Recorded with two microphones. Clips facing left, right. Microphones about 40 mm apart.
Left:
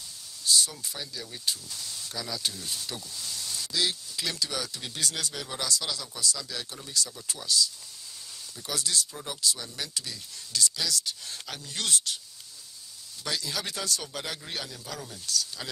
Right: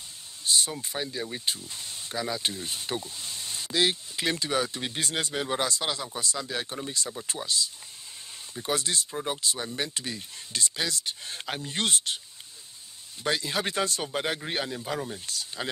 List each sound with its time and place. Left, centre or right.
0.5 s speech: right
13.2 s speech: right